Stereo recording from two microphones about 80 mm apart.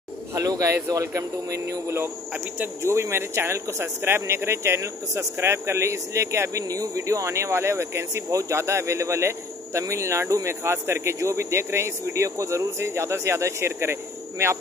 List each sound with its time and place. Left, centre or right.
0.3 s a man's voice: right